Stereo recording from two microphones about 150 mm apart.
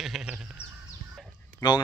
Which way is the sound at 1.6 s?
25° left (ahead or behind).